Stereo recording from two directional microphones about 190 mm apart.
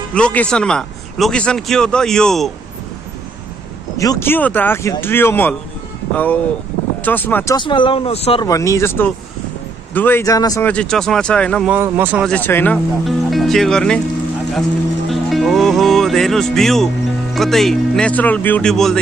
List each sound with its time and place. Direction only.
0.1 s a man's voice: 5° left (ahead or behind)
4.0 s speech: 15° left (ahead or behind)
7.5 s speech: 25° left (ahead or behind)
8.5 s speech: 15° left (ahead or behind)
10.7 s a man's voice: 5° left (ahead or behind)
11.7 s speech: 10° right (ahead or behind)
12.3 s a man's voice: 10° left (ahead or behind)
15.0 s speech: centre (ahead or behind)